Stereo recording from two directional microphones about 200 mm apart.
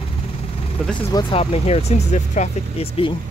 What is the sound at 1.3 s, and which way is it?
Speech, 30° left (ahead or behind).